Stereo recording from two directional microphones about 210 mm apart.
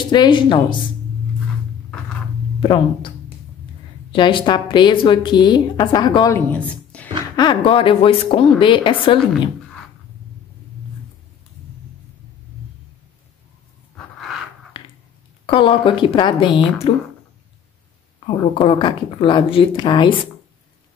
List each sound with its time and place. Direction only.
0.0 s a woman's voice: 20° left (ahead or behind)
2.6 s a woman's voice: 25° left (ahead or behind)
4.1 s a woman's voice: 25° left (ahead or behind); by 7.2 s 5° left (ahead or behind)
7.3 s a woman's voice: 25° left (ahead or behind)
13.9 s a sound: centre (ahead or behind)
14.7 s a sound: 25° left (ahead or behind)
15.4 s a woman's voice: 25° left (ahead or behind)
18.2 s a woman's voice: 25° left (ahead or behind)